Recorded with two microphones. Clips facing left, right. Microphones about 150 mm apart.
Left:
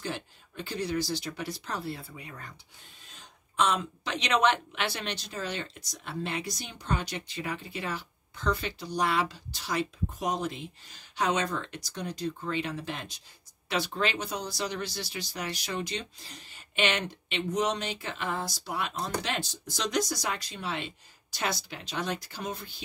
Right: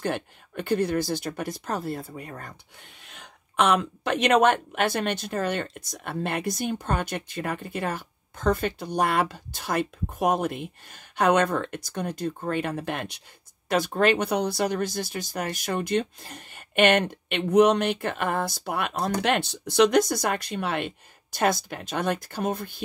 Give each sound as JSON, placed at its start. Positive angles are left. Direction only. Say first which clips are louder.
{"t": 0.0, "sound": "speech", "louder": "right 8 dB", "side_deg": -55}
{"t": 3.0, "sound": "speech", "louder": "right 5 dB", "side_deg": -70}
{"t": 13.7, "sound": "speech", "louder": "right 8 dB", "side_deg": -50}